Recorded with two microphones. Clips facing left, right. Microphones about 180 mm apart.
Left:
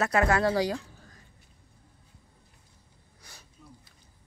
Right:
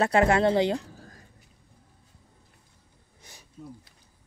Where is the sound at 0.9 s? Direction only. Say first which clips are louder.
Right 6 dB; 45° right (ahead or behind).